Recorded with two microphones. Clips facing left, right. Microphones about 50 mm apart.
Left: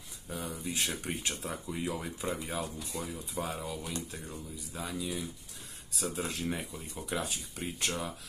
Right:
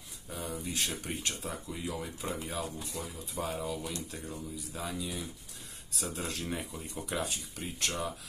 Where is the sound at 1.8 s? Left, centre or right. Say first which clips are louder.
Left 3 dB; left.